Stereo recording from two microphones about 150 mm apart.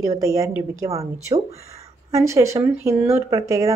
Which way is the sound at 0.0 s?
20° right (ahead or behind).